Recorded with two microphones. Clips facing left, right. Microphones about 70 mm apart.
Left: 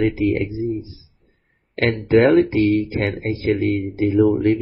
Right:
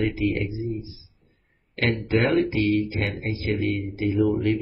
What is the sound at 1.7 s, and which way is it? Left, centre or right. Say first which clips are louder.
Speech: left 7 dB; left.